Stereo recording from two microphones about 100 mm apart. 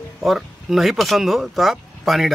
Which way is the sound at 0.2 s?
Centre (ahead or behind).